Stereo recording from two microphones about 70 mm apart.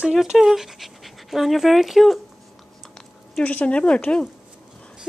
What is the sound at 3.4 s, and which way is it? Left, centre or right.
Speech, centre.